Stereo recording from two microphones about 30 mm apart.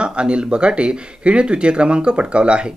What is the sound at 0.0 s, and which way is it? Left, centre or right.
Speech, right.